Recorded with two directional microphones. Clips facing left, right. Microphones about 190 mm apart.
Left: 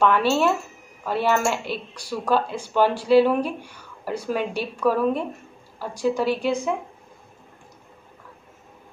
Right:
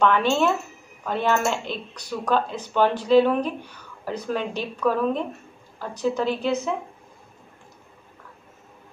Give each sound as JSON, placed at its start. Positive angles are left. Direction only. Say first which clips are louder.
{"t": 0.0, "sound": "speech", "louder": "left 1 dB", "side_deg": 5}